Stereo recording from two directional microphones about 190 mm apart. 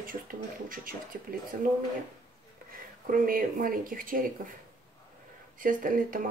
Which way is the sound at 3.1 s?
45° right (ahead or behind).